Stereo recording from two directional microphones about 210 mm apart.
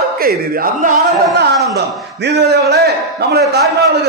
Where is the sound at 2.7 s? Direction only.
50° right (ahead or behind).